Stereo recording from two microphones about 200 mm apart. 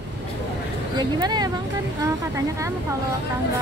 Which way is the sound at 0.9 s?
20° right (ahead or behind).